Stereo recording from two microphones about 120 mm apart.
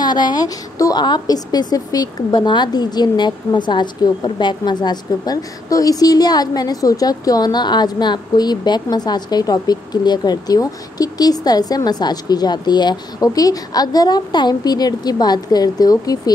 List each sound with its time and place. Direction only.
0.0 s a woman's voice: 35° left (ahead or behind)